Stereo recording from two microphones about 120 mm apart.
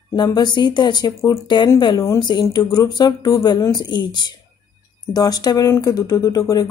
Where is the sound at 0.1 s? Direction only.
35° left (ahead or behind).